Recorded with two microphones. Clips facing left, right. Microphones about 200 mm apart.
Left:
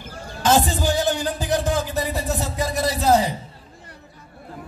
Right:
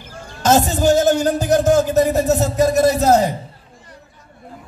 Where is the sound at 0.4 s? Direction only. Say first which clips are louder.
Right 4 dB; 45° right (ahead or behind).